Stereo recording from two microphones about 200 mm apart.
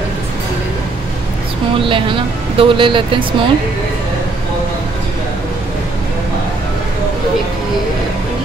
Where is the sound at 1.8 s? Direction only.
25° right (ahead or behind).